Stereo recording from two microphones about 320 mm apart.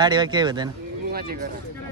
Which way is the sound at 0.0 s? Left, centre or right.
Centre.